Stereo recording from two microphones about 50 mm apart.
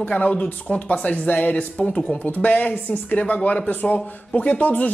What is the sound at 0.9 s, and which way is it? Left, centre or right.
Speech, left.